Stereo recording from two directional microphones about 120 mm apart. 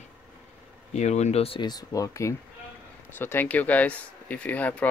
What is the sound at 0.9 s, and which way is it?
Speech, 70° left (ahead or behind).